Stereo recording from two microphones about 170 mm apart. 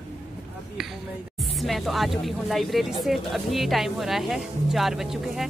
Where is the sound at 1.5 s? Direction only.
Centre (ahead or behind).